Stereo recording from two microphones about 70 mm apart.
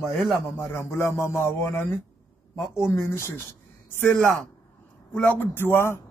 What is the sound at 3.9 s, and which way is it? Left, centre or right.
A man's voice, left.